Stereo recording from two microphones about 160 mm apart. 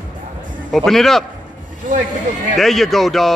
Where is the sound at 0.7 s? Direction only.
Centre (ahead or behind).